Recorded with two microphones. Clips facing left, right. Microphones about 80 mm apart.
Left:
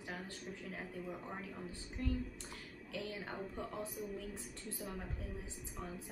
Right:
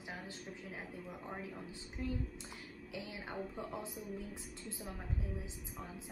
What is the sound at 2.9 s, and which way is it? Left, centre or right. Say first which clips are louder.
A woman's voice: left 2 dB; centre.